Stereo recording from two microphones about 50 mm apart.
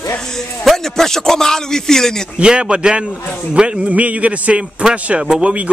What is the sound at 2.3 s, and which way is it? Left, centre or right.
A man's voice, centre.